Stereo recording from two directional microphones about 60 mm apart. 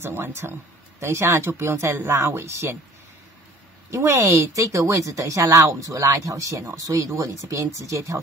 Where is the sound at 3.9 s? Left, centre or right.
Right.